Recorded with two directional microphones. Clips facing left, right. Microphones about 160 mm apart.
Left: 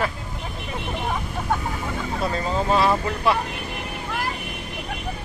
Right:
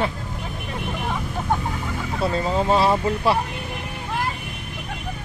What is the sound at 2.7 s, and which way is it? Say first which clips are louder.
Speech: right 1 dB; 30° right (ahead or behind).